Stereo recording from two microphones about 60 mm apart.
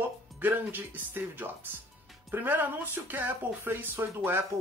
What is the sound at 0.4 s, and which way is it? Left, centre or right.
Speech, right.